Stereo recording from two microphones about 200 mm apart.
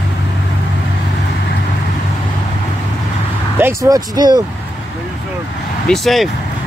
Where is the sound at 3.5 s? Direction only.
15° right (ahead or behind).